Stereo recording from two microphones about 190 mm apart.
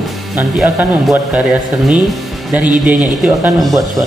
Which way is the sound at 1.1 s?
Centre (ahead or behind).